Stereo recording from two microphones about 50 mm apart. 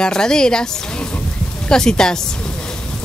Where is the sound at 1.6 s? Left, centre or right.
Centre.